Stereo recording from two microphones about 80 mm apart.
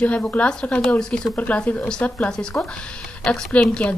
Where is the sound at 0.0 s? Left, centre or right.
Centre.